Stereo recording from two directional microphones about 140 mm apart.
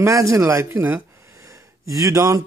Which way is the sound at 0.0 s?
20° right (ahead or behind).